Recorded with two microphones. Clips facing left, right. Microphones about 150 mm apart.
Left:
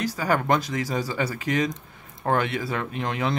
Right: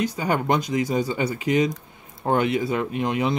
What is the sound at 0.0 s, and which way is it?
Speech, 20° right (ahead or behind).